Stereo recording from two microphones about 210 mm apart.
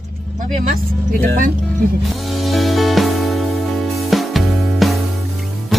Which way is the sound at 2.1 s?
Centre (ahead or behind).